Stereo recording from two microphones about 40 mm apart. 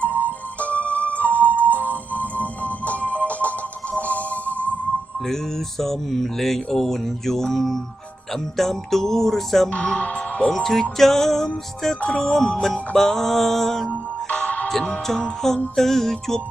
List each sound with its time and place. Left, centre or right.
0.0 s music: left
1.0 s music: right
1.8 s music: left
5.2 s mantra: centre
9.7 s speech: left
10.5 s mantra: centre
14.3 s music: left
15.1 s mantra: centre